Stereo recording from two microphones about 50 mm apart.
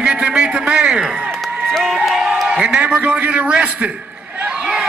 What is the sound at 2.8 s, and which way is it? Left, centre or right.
A man's voice, right.